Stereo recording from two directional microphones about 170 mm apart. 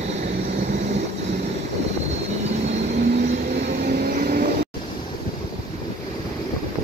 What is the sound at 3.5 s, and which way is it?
Vehicle, 65° right (ahead or behind).